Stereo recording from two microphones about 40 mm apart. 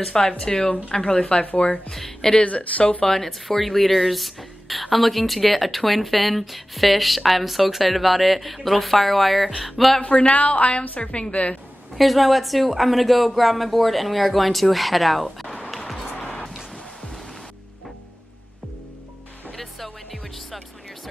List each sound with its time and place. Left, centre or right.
0.0 s speech: centre
1.4 s speech: left
1.9 s a woman's voice: centre
2.4 s speech: left
3.1 s speech: centre
10.0 s speech: left
11.9 s speech: centre
15.7 s music: centre
16.2 s music: left
19.5 s music: centre